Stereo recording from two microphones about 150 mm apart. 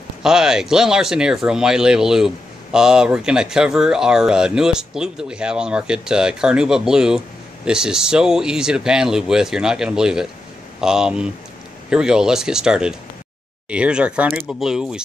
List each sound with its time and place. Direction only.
0.2 s speech: 5° right (ahead or behind)